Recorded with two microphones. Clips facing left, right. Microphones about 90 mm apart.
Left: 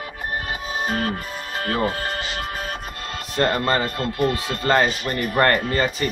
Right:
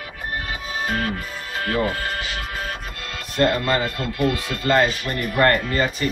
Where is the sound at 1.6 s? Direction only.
40° left (ahead or behind).